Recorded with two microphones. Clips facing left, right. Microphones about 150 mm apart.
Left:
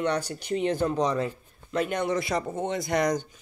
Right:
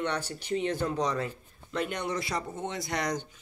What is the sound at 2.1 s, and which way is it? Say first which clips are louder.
Speech: left 6 dB; 50° left (ahead or behind).